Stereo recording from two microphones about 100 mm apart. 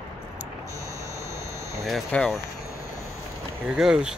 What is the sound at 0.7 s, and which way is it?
Hum, 35° right (ahead or behind).